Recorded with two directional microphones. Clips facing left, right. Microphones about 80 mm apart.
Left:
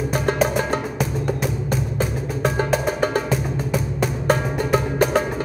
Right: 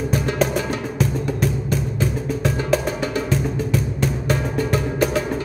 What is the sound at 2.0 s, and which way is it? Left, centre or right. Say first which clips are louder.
Music: right 1 dB; left.